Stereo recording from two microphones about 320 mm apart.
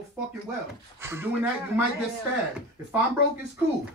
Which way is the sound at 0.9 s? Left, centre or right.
Centre.